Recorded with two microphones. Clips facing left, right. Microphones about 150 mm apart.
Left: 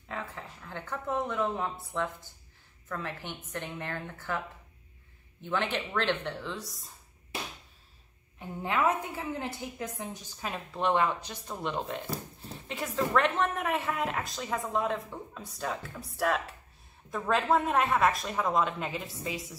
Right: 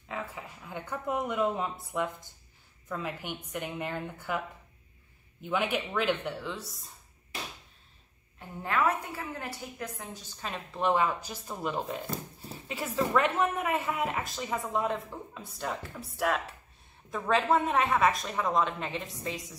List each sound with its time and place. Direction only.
0.1 s speech: 5° right (ahead or behind)
5.4 s speech: 10° right (ahead or behind)
8.4 s a woman's voice: 20° left (ahead or behind)
10.4 s a woman's voice: centre (ahead or behind)